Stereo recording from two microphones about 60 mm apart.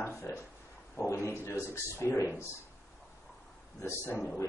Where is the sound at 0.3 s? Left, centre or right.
Left.